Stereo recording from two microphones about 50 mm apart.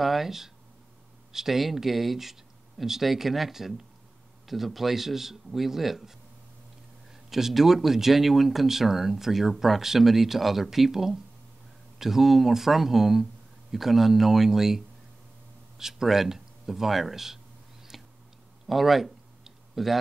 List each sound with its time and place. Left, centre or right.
0.0 s speech: centre
7.2 s speech: centre
15.8 s speech: centre
17.9 s a sound: centre